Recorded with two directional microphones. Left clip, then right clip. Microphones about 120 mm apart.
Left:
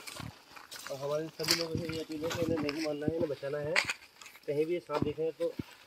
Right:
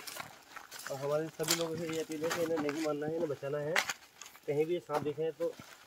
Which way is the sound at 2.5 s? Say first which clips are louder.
Even; 15° left (ahead or behind).